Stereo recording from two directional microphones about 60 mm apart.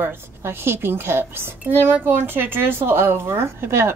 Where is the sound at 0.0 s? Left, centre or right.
Right.